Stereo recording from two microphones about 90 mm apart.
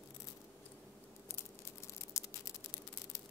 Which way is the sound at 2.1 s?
30° left (ahead or behind).